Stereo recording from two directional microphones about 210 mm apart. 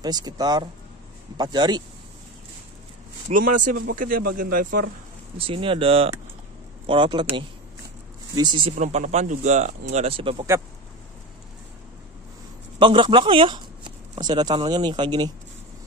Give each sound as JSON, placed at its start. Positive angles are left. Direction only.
{"t": 0.0, "sound": "speech", "side_deg": -20}
{"t": 3.3, "sound": "speech", "side_deg": -40}
{"t": 5.4, "sound": "speech", "side_deg": -25}
{"t": 8.4, "sound": "speech", "side_deg": -20}
{"t": 12.7, "sound": "speech", "side_deg": -25}